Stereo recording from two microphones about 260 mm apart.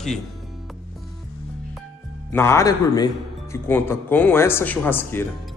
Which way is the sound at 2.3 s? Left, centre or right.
Centre.